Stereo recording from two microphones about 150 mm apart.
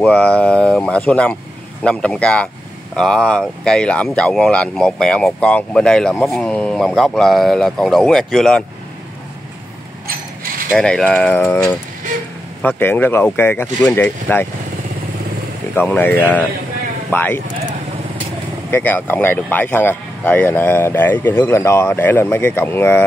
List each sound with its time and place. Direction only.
0.0 s speech: 5° left (ahead or behind)
10.7 s speech: 5° left (ahead or behind)
16.0 s speech: 15° left (ahead or behind)
18.7 s speech: 15° left (ahead or behind)